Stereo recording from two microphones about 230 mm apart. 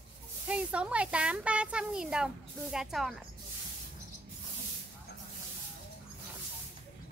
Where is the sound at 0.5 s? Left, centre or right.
Centre.